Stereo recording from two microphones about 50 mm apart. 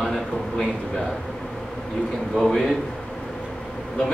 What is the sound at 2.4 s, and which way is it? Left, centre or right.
Speech, centre.